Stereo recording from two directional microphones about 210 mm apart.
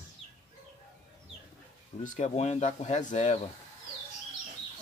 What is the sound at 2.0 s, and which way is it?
Speech, 35° left (ahead or behind).